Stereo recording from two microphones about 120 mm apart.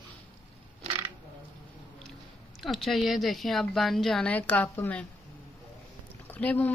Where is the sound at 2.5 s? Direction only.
Centre (ahead or behind).